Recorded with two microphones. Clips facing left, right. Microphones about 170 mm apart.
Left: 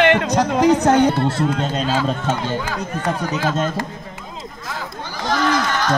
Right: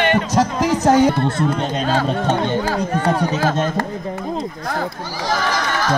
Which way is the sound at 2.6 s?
35° right (ahead or behind).